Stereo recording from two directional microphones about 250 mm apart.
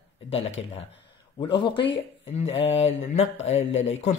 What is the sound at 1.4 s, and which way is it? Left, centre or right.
Speech, centre.